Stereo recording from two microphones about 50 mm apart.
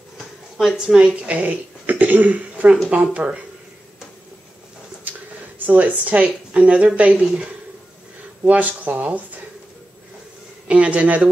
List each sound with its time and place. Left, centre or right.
0.7 s speech: centre
5.1 s a sound: right
5.7 s speech: right
8.5 s speech: right
10.7 s speech: right